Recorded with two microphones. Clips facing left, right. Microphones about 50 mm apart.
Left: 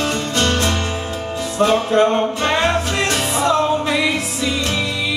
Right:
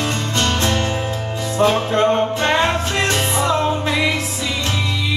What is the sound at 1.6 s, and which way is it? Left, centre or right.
Music, centre.